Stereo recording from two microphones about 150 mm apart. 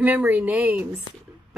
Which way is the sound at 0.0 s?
10° right (ahead or behind).